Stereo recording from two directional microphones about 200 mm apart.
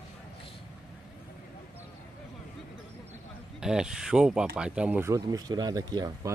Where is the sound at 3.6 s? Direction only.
5° right (ahead or behind); by 6.1 s 20° right (ahead or behind).